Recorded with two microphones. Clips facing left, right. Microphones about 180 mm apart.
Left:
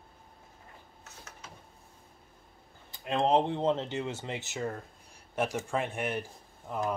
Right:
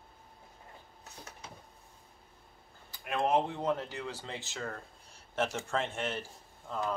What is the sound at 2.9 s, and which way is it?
Speech, 25° left (ahead or behind).